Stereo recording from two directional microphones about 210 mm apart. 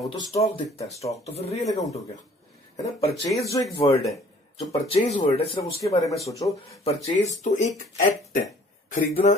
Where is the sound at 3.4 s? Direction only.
15° left (ahead or behind).